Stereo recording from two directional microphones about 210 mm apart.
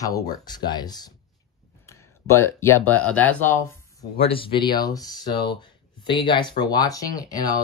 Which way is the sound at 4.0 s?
25° left (ahead or behind).